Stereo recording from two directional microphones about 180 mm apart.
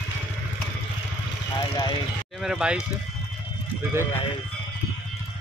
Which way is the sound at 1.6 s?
25° left (ahead or behind).